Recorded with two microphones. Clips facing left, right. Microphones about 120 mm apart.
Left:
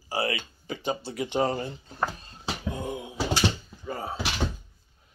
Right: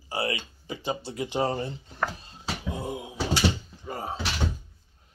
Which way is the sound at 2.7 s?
30° right (ahead or behind).